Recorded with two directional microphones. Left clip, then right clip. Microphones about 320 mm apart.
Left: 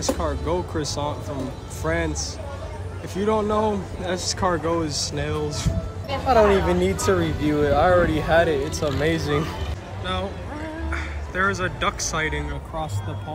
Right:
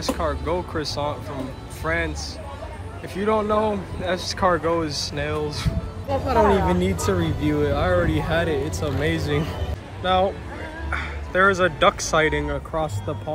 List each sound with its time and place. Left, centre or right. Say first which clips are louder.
0.2 s speech: right 1 dB; centre